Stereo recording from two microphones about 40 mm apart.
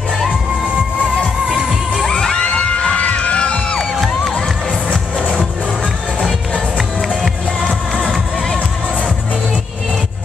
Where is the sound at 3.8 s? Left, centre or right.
Centre.